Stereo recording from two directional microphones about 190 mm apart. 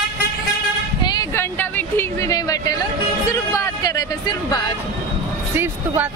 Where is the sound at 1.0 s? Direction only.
20° left (ahead or behind).